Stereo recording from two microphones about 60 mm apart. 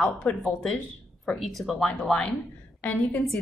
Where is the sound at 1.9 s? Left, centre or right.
Centre.